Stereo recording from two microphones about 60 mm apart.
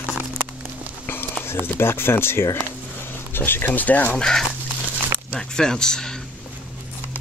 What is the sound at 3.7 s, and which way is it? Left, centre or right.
Speech, left.